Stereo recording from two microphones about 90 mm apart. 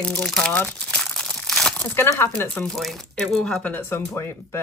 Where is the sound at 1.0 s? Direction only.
5° left (ahead or behind).